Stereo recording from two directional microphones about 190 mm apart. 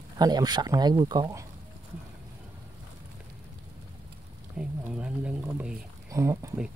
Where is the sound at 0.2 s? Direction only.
20° right (ahead or behind).